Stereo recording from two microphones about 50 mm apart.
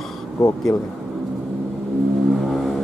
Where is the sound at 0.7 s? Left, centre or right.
Left.